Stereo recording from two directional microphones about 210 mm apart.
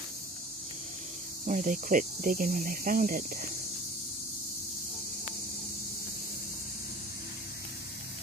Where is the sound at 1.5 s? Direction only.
40° right (ahead or behind).